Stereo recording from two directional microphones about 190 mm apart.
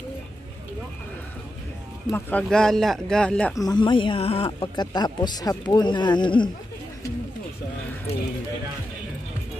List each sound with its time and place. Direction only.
2.0 s speech: 10° left (ahead or behind)
3.5 s speech: 20° left (ahead or behind)